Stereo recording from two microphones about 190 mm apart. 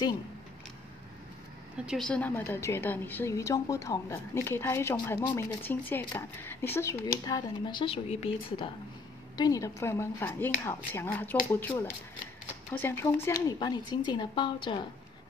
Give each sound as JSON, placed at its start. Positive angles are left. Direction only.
{"t": 1.9, "sound": "a woman's voice", "side_deg": 5}
{"t": 9.4, "sound": "a woman's voice", "side_deg": 15}
{"t": 12.7, "sound": "speech", "side_deg": 10}